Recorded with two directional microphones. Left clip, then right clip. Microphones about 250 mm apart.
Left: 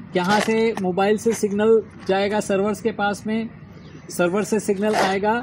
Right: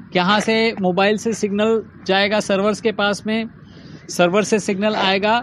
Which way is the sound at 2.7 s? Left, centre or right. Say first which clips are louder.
Right 4 dB; right.